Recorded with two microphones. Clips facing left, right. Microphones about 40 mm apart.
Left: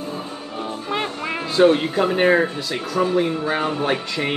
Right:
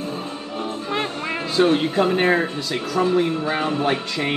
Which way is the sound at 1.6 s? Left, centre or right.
Centre.